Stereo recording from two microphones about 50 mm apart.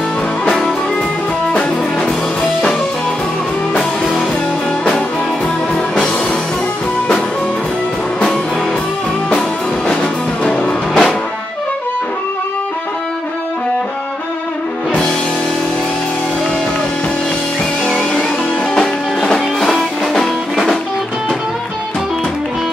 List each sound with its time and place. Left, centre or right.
0.5 s music: centre
10.4 s music: centre
18.8 s music: centre